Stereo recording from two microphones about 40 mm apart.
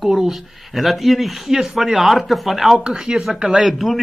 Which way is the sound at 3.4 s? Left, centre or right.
Centre.